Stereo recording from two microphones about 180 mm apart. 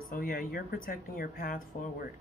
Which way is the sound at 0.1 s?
55° left (ahead or behind).